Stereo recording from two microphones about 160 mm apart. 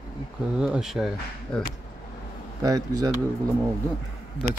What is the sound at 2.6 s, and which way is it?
Speech, 25° right (ahead or behind).